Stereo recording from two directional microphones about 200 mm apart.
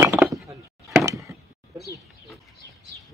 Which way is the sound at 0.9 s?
15° right (ahead or behind).